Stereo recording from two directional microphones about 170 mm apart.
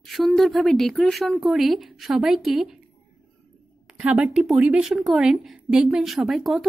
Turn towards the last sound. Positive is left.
turn(degrees=0)  # may be behind; listen again after turning